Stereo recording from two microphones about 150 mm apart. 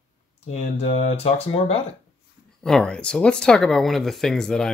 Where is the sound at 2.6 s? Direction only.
5° left (ahead or behind).